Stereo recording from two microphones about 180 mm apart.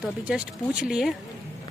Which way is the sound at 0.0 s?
5° right (ahead or behind).